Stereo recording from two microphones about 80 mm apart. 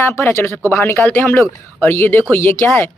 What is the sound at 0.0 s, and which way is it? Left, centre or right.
Speech, left.